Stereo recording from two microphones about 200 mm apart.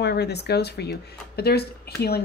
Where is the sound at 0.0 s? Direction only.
55° left (ahead or behind).